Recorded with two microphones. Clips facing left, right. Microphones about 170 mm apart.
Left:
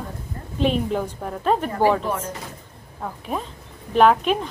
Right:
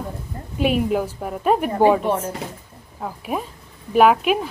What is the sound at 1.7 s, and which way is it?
Speech, 25° right (ahead or behind).